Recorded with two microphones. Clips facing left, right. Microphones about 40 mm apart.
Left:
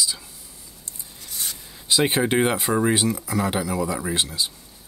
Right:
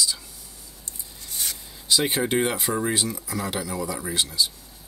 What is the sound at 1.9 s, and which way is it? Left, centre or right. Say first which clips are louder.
Speech: left 3 dB; left.